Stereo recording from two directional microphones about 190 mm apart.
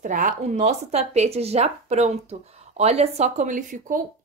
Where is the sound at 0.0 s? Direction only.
45° right (ahead or behind).